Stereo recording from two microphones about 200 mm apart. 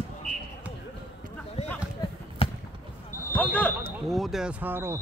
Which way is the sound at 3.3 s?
5° left (ahead or behind).